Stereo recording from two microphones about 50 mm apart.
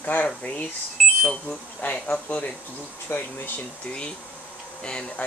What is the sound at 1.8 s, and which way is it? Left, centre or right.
Speech, left.